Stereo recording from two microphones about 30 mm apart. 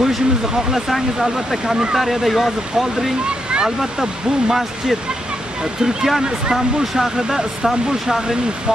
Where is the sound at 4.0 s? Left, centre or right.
Centre.